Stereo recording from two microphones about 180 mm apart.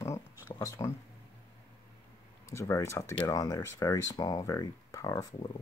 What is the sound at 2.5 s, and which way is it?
Speech, 15° left (ahead or behind).